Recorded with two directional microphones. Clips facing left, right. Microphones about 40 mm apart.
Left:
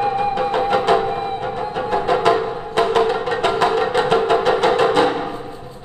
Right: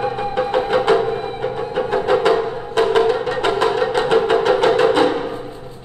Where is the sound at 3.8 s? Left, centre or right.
Left.